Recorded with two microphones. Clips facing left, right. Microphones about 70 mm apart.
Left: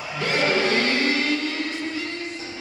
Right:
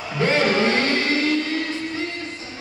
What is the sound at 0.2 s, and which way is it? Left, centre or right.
Music, right.